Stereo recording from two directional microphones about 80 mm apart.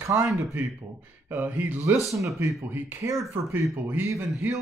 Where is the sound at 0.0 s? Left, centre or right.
Right.